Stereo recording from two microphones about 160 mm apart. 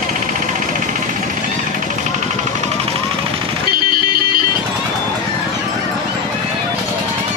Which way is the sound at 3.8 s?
70° right (ahead or behind).